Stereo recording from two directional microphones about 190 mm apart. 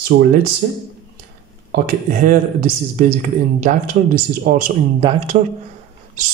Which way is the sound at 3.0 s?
40° right (ahead or behind).